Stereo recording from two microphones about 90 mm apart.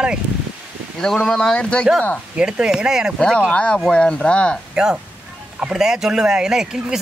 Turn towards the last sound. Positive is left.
turn(degrees=-5)  # may be behind; listen again after turning